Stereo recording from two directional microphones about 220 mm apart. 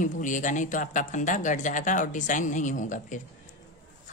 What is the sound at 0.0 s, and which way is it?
Speech, 35° left (ahead or behind).